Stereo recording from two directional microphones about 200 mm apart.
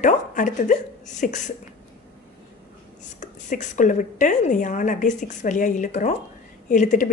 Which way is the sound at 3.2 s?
40° left (ahead or behind).